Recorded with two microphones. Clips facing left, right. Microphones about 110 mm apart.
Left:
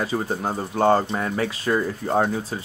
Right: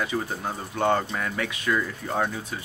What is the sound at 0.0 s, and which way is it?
Speech, 35° left (ahead or behind).